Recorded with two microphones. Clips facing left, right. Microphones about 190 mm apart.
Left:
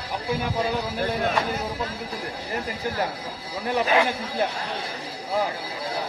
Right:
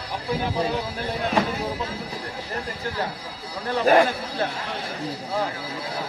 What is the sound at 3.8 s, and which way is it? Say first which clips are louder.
Speech: right 5 dB; 45° right (ahead or behind).